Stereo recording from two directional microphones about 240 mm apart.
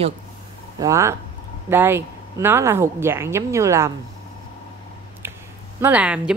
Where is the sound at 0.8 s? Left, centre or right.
Centre.